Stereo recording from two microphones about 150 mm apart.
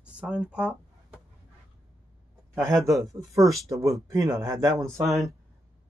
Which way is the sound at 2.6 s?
20° right (ahead or behind).